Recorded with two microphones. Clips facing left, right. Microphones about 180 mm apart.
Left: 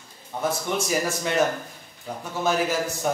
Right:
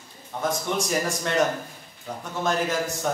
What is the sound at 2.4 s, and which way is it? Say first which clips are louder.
Speech: left 1 dB; 5° left (ahead or behind).